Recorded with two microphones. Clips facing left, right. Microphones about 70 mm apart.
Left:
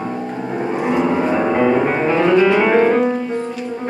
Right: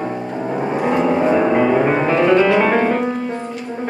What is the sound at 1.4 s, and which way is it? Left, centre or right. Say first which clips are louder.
Music: right 1 dB; centre.